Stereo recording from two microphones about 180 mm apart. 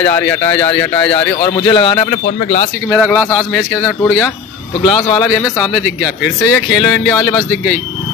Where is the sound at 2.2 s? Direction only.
55° left (ahead or behind).